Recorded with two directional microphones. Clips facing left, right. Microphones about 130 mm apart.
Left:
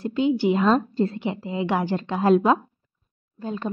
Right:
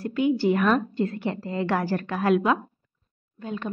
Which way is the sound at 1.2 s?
15° left (ahead or behind).